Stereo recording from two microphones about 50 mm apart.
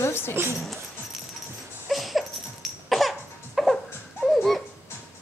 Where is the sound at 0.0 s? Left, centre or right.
Left.